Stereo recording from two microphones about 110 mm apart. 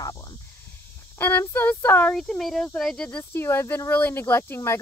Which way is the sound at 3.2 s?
20° left (ahead or behind).